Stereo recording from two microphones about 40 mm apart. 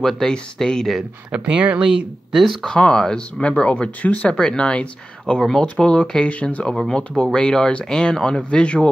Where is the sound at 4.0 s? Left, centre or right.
Left.